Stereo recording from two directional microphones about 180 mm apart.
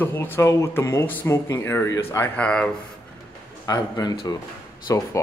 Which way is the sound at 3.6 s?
20° left (ahead or behind).